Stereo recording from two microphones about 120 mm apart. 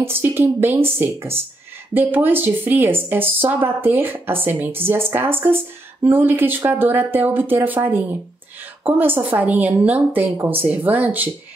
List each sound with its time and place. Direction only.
0.0 s a woman's voice: 20° right (ahead or behind)